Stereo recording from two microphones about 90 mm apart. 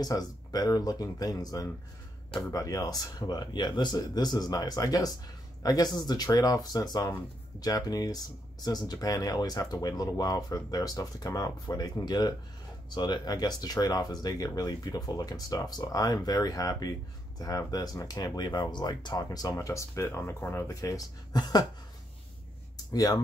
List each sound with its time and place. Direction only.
0.0 s speech: 45° left (ahead or behind)
20.3 s speech: 25° left (ahead or behind)
20.6 s speech: 40° left (ahead or behind)
22.9 s speech: 45° left (ahead or behind)